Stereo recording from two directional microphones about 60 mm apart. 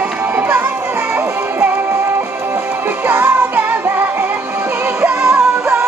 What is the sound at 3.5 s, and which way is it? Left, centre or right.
Music, right.